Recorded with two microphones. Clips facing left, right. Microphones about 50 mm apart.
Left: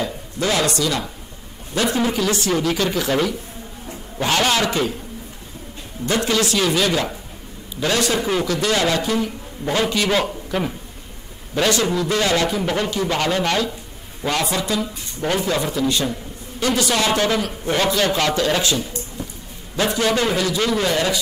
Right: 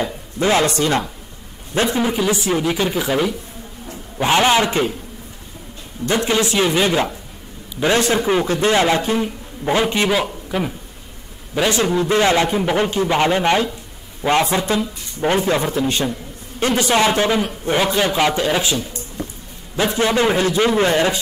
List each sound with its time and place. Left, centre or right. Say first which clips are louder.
0.0 s speech: right 3 dB; right
2.0 s a man's voice: right 1 dB; centre
6.0 s a man's voice: right 2 dB; right
8.2 s a man's voice: right 3 dB; centre
10.0 s speech: right 1 dB; centre
11.7 s a man's voice: right 3 dB; right
19.8 s a man's voice: right 2 dB; right